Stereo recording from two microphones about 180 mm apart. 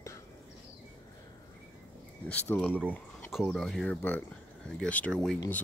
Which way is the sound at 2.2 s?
10° left (ahead or behind).